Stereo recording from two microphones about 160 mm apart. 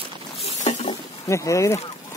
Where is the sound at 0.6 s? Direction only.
45° left (ahead or behind).